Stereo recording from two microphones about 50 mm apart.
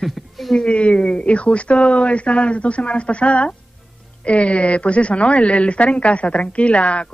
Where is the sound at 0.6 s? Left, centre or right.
Left.